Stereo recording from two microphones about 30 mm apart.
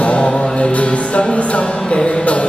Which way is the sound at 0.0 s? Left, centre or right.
Left.